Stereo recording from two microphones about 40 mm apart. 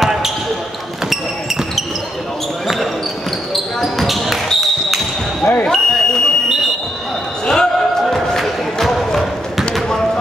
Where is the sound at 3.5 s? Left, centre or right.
Centre.